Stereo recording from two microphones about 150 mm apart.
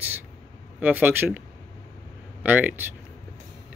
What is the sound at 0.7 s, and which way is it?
Speech, 10° right (ahead or behind).